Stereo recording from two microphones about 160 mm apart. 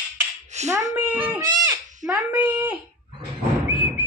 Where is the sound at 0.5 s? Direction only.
45° right (ahead or behind).